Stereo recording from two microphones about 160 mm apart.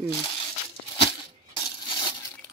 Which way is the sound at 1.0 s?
30° left (ahead or behind).